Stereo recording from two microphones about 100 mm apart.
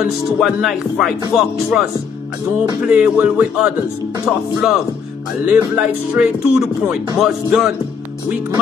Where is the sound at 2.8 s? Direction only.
15° right (ahead or behind).